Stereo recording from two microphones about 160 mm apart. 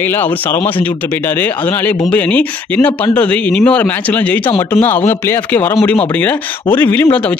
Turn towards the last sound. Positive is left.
turn(degrees=10)  # may be behind; listen again after turning